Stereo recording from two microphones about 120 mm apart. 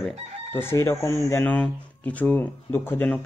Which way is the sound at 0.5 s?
20° left (ahead or behind).